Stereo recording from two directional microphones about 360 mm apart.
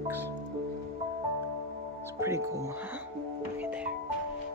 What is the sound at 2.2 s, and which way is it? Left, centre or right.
Speech, centre.